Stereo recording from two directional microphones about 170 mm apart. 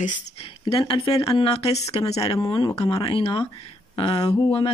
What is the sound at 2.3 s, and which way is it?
Speech, 25° left (ahead or behind).